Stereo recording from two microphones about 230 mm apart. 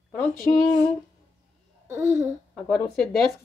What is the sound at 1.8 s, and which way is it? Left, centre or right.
Speech, centre.